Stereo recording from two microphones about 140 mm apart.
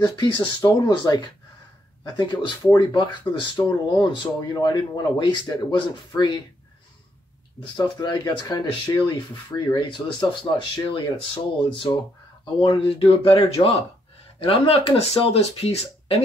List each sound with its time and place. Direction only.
0.0 s speech: 30° left (ahead or behind)
7.6 s speech: 35° left (ahead or behind)